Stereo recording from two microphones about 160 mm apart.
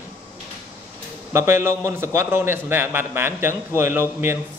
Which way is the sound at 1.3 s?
15° right (ahead or behind).